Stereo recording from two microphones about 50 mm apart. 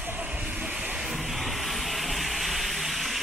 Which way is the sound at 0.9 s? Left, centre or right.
Centre.